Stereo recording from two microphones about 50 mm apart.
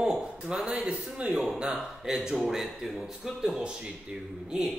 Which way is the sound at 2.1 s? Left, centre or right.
Centre.